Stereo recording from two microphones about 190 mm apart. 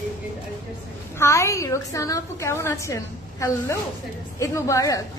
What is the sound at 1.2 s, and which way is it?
A woman's voice, 15° left (ahead or behind).